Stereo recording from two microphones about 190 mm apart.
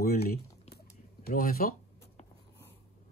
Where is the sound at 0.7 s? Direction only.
55° left (ahead or behind).